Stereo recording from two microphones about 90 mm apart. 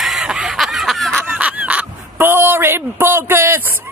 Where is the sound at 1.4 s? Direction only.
15° right (ahead or behind).